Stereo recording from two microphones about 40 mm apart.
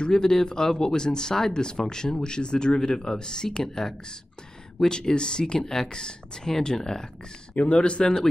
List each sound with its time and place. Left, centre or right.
0.0 s speech: centre
7.5 s speech: left